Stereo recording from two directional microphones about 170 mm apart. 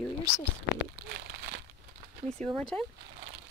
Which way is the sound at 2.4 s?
10° left (ahead or behind).